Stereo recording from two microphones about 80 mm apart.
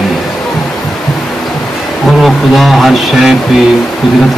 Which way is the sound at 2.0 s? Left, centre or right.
Centre.